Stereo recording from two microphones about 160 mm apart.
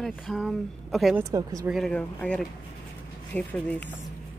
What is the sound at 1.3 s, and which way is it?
Speech, 20° right (ahead or behind).